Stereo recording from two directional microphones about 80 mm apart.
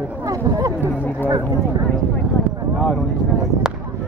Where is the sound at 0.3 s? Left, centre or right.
Right.